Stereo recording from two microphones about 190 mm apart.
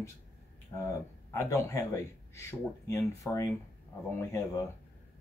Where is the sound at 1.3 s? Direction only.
15° left (ahead or behind).